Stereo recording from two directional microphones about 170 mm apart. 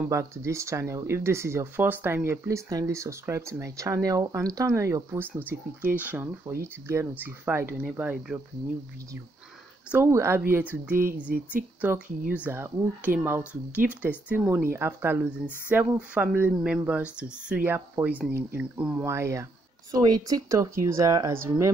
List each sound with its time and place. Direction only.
0.0 s speech: 15° right (ahead or behind)
9.8 s speech: 15° right (ahead or behind)